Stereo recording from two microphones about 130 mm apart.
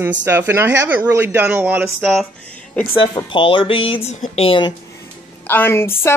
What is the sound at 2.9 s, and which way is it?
Speech, 40° left (ahead or behind).